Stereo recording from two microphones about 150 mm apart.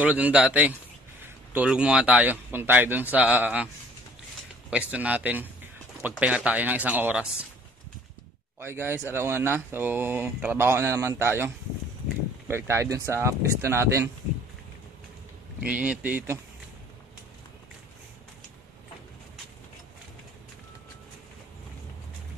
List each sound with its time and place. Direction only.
0.0 s speech: 10° right (ahead or behind)
4.6 s speech: 10° right (ahead or behind)
8.5 s speech: 15° right (ahead or behind)
15.6 s speech: 10° right (ahead or behind)